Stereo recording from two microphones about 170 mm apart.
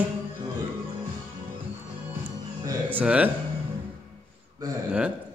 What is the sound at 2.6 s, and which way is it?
Music, 10° right (ahead or behind).